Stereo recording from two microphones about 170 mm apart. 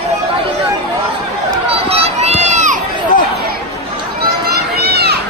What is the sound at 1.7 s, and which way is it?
Children playing, 35° right (ahead or behind).